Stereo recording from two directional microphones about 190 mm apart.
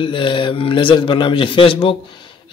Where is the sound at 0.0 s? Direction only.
25° left (ahead or behind).